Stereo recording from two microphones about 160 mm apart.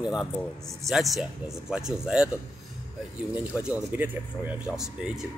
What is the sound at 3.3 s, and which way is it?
Speech, 10° right (ahead or behind).